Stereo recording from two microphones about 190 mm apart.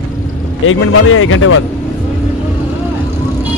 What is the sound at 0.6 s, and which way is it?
Speech, 90° left.